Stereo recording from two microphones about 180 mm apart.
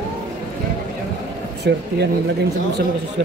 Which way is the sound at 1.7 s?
70° right (ahead or behind).